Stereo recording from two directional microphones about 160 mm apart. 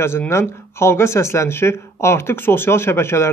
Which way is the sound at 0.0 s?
15° left (ahead or behind).